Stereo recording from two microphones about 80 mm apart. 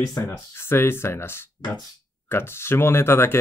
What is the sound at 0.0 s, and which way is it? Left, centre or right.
Speech, left.